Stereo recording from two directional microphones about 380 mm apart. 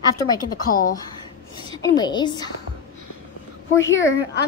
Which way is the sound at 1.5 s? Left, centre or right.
Centre.